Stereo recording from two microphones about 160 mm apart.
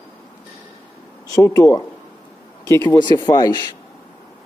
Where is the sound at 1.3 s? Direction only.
20° left (ahead or behind).